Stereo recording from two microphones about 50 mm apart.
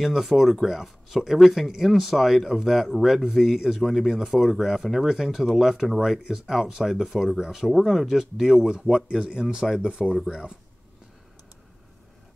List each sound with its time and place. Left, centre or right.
0.0 s speech: centre